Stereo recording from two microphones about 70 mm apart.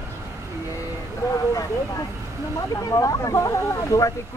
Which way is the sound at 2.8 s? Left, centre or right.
Left.